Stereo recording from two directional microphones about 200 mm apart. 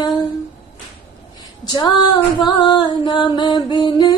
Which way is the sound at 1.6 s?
25° left (ahead or behind).